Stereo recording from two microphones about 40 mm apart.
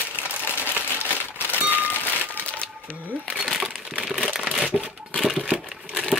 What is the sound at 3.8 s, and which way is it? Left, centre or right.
Crumpling, right.